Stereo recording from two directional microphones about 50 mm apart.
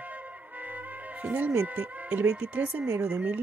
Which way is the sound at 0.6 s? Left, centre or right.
Right.